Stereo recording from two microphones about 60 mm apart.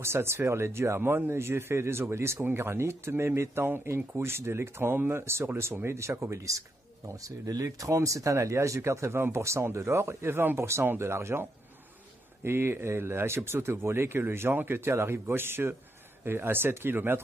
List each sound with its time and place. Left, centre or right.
0.0 s speech: right
7.2 s speech: right
12.4 s speech: right